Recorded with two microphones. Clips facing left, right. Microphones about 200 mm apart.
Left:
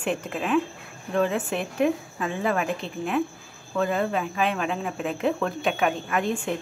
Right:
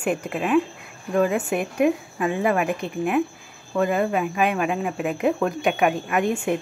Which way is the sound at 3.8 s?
10° right (ahead or behind).